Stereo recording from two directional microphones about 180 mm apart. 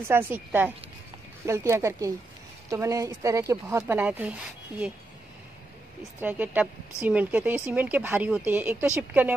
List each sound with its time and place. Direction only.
0.1 s a woman's voice: 10° right (ahead or behind)
6.2 s a woman's voice: 10° right (ahead or behind)